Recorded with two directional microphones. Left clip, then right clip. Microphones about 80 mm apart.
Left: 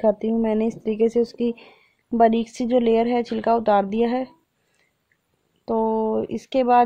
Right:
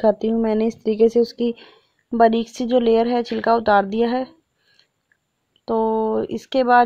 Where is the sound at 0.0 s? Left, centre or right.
Right.